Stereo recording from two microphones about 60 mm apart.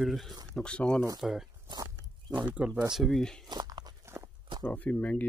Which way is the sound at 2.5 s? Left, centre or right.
Right.